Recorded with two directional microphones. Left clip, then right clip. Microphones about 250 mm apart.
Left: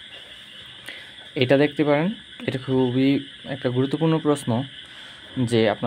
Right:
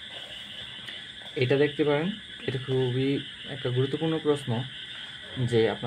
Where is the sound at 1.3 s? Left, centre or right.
Left.